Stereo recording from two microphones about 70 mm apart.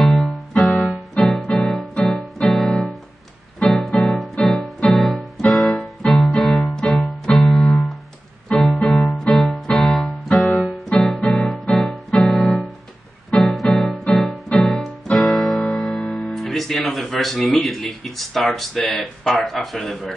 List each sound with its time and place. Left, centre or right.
0.0 s keyboard: centre
0.5 s music: centre
0.8 s keyboard: centre
2.7 s piano: centre
3.6 s keyboard: centre
4.1 s music: centre
4.9 s keyboard: centre
8.5 s keyboard: centre
9.0 s music: centre
9.3 s music: centre
18.9 s speech: centre